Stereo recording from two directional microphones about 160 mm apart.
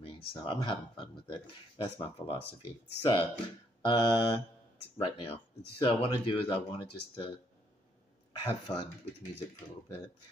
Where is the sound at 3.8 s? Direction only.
30° left (ahead or behind).